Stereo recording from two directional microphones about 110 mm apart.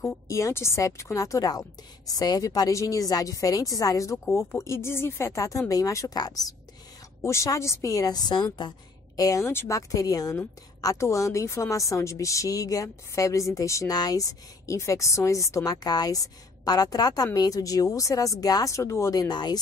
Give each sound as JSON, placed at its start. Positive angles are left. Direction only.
{"t": 0.3, "sound": "a woman's voice", "side_deg": 25}